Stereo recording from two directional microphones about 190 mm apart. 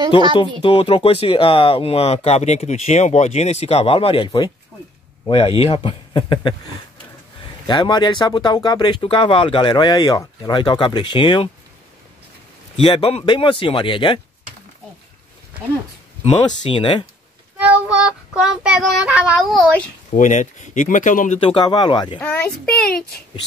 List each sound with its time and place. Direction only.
0.6 s speech: 30° left (ahead or behind)
5.6 s speech: 30° left (ahead or behind)
7.6 s speech: 25° left (ahead or behind)
12.7 s speech: 30° left (ahead or behind)
16.4 s speech: 25° left (ahead or behind)
17.6 s child singing: 5° right (ahead or behind)
20.2 s speech: 40° left (ahead or behind)
21.4 s speech: 25° left (ahead or behind)
22.2 s child singing: 10° left (ahead or behind)